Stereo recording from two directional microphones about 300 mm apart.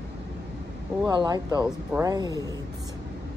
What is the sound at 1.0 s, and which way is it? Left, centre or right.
Speech, centre.